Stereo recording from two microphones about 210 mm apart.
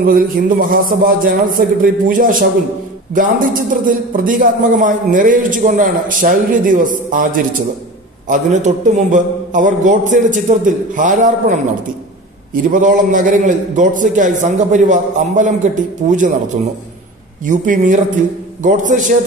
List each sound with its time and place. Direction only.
0.0 s a man's voice: 45° right (ahead or behind)
12.6 s a man's voice: 40° right (ahead or behind)
17.5 s a man's voice: 40° right (ahead or behind)